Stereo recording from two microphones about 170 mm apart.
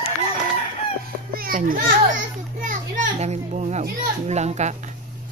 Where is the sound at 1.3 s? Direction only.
55° right (ahead or behind); by 4.8 s 40° right (ahead or behind).